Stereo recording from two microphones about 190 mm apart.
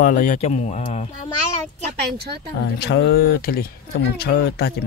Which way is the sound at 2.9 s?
60° left (ahead or behind).